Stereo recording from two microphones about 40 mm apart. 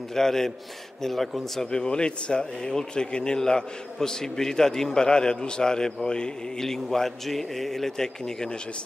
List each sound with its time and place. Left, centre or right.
0.1 s speech: centre
1.7 s speech: left